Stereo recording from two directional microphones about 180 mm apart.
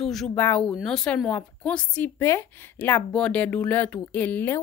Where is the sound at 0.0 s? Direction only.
Centre (ahead or behind).